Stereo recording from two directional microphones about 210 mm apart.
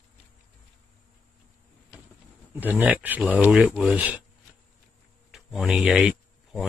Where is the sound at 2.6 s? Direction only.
10° right (ahead or behind).